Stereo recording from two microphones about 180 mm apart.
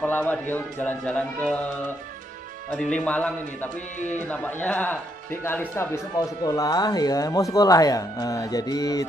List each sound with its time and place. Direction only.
0.0 s speech: 10° left (ahead or behind)
2.7 s speech: 5° left (ahead or behind)